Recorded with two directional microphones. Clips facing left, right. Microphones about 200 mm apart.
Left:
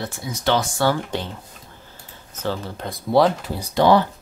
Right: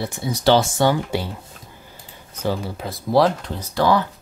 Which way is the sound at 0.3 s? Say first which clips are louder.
Right 5 dB; 35° right (ahead or behind).